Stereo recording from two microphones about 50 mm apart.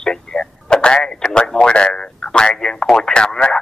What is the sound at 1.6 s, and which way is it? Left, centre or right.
Radio, centre.